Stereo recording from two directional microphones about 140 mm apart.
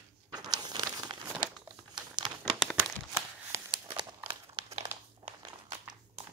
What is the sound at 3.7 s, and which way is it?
Crumpling, 35° right (ahead or behind).